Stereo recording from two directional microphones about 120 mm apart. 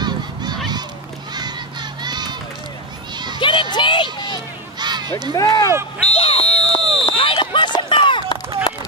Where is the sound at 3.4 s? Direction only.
45° left (ahead or behind).